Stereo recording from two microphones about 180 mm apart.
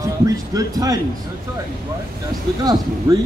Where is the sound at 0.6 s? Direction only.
20° right (ahead or behind).